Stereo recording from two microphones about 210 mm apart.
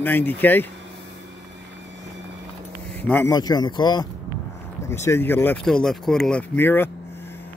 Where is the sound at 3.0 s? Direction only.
10° left (ahead or behind).